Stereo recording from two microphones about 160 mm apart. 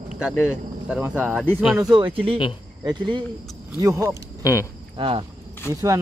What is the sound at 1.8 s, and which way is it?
Speech, 25° right (ahead or behind).